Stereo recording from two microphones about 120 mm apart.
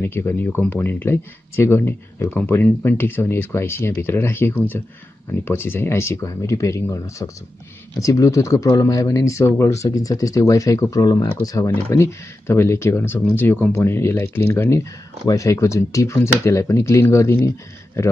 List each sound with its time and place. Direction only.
0.1 s speech: 15° left (ahead or behind)